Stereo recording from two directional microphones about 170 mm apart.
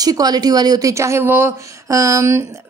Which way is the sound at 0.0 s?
20° right (ahead or behind).